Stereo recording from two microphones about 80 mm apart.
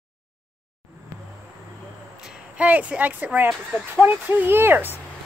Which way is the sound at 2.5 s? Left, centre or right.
Centre.